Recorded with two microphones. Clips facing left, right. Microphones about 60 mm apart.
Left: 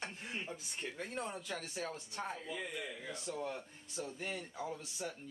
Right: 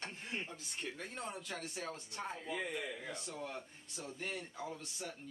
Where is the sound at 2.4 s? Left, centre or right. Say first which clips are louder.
Right 2 dB; right.